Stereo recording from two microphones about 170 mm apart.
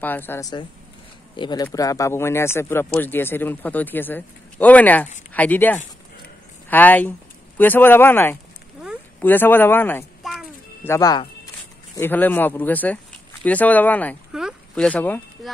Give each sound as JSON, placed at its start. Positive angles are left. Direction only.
{"t": 0.0, "sound": "speech", "side_deg": 10}
{"t": 10.2, "sound": "a sound", "side_deg": 0}
{"t": 10.8, "sound": "speech", "side_deg": 20}
{"t": 12.0, "sound": "speech", "side_deg": 10}
{"t": 14.3, "sound": "a sound", "side_deg": -5}
{"t": 14.9, "sound": "speech", "side_deg": 10}